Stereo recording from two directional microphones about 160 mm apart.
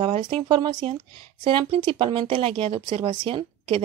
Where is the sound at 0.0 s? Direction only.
35° right (ahead or behind).